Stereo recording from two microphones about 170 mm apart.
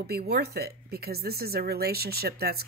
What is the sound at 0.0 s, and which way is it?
Speech, 70° right (ahead or behind).